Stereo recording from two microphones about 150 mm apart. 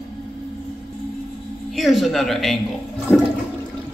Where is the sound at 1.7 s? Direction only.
Centre (ahead or behind).